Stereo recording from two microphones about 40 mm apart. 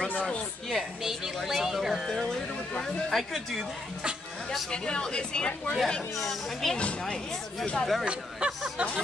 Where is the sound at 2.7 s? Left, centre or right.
Centre.